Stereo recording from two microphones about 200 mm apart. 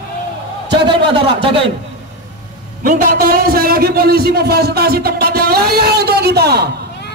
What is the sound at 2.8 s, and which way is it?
A man's voice, 40° right (ahead or behind).